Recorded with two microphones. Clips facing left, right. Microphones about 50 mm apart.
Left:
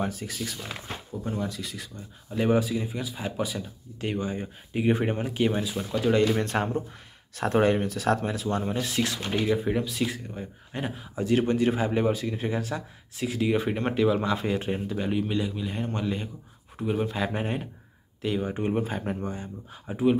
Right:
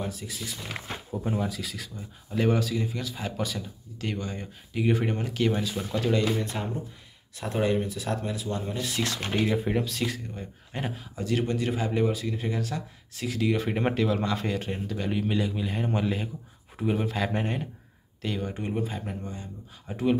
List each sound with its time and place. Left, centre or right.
0.0 s speech: left
1.2 s a man's voice: centre
1.5 s speech: centre
5.5 s speech: centre
6.3 s speech: left
7.5 s speech: left
9.4 s speech: centre
9.9 s speech: centre
10.7 s speech: centre
11.1 s speech: left; by 15.0 s centre
15.0 s a man's voice: centre
18.4 s speech: left
18.8 s speech: left
19.9 s speech: centre